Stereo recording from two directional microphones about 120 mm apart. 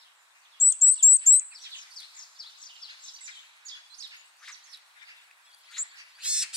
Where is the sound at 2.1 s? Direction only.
40° left (ahead or behind).